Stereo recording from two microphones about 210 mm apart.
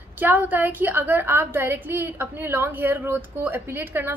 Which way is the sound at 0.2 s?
10° right (ahead or behind).